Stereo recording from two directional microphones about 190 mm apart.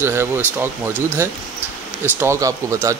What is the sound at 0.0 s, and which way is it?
Speech, 15° right (ahead or behind).